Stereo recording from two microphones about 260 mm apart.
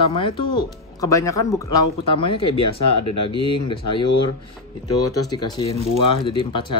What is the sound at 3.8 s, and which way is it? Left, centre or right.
Speech, left.